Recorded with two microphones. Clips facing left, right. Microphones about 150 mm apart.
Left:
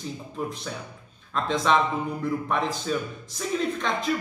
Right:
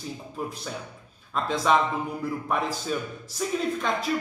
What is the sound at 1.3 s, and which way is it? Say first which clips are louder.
Speech: even; 5° right (ahead or behind).